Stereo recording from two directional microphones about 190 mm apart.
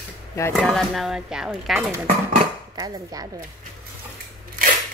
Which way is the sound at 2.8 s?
15° right (ahead or behind).